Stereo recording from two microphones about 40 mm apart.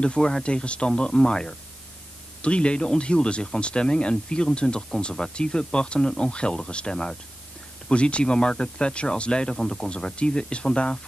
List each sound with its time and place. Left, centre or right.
0.0 s speech: left